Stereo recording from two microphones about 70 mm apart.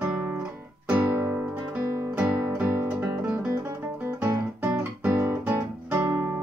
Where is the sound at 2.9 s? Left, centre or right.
Centre.